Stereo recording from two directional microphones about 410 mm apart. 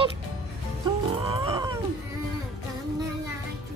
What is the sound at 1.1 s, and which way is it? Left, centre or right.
Wild animals, centre.